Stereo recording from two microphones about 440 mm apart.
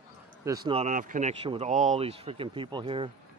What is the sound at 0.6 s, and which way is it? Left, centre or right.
Speech, centre.